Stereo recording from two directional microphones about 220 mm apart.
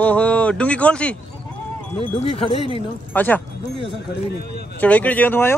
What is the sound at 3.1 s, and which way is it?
Speech, 10° left (ahead or behind).